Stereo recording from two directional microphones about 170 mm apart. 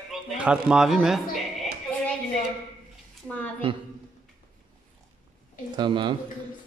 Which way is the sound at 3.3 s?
10° left (ahead or behind).